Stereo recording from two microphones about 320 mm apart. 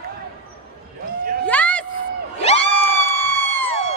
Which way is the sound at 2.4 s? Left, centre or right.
Centre.